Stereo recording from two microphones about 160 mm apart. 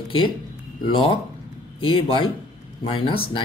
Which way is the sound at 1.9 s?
30° left (ahead or behind).